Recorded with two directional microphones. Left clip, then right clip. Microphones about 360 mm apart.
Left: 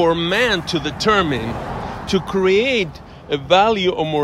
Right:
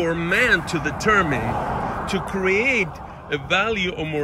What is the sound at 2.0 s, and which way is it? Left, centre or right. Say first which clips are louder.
Speech: left 5 dB; centre.